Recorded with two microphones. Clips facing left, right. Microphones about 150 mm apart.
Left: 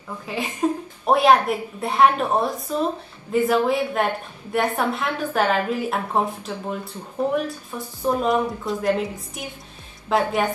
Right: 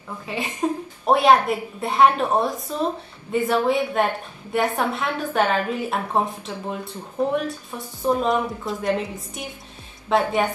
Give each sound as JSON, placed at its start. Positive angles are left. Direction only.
{"t": 0.3, "sound": "a woman's voice", "side_deg": 0}